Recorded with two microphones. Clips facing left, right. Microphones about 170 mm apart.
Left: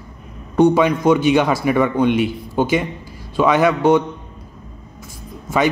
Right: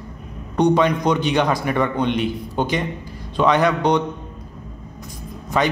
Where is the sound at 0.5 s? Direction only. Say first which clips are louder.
Left 3 dB; 5° left (ahead or behind).